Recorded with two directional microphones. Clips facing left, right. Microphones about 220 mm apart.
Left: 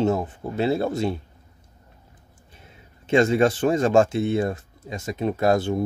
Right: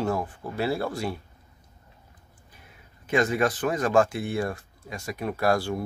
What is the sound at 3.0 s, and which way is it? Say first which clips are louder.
Speech: left 6 dB; 25° left (ahead or behind).